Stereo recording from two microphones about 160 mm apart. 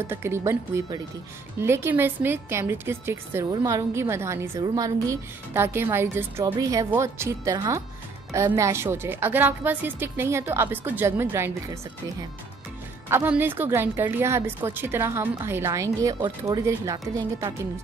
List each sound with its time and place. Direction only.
0.0 s a woman's voice: 15° right (ahead or behind)